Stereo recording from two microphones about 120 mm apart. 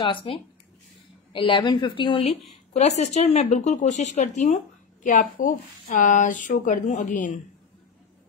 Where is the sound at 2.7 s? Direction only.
65° left (ahead or behind); by 7.4 s 90° left.